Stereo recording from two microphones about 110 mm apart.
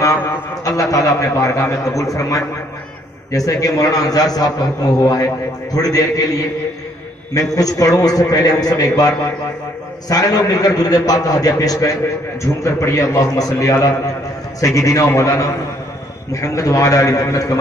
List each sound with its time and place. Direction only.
0.7 s a man's voice: 30° left (ahead or behind)
7.5 s a man's voice: 30° left (ahead or behind)